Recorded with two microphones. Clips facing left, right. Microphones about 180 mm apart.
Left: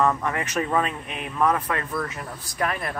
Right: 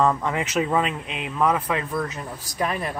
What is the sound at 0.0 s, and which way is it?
Speech, 15° right (ahead or behind).